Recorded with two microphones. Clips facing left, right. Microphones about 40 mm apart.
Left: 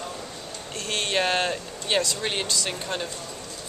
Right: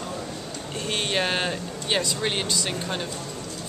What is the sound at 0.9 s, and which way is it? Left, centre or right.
Speech, centre.